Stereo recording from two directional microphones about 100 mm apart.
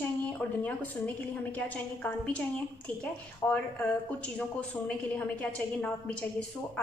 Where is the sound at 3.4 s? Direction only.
15° left (ahead or behind).